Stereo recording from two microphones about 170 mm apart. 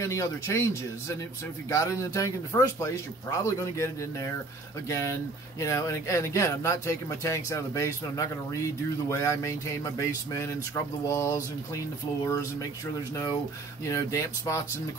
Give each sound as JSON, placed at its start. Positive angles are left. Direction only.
{"t": 0.0, "sound": "speech", "side_deg": 15}
{"t": 13.1, "sound": "speech", "side_deg": 25}